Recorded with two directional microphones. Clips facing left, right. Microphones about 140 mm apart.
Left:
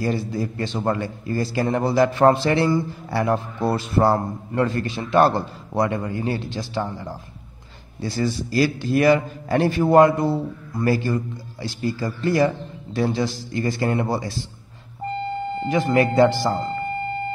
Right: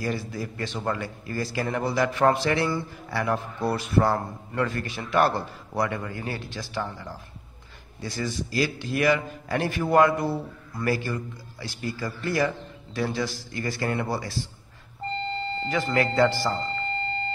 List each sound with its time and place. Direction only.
0.0 s a man's voice: 25° left (ahead or behind)